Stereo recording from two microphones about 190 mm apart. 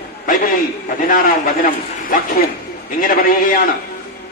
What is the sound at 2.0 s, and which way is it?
A man's voice, 50° left (ahead or behind).